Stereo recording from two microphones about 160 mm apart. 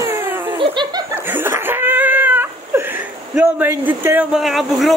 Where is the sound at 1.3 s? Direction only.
15° right (ahead or behind).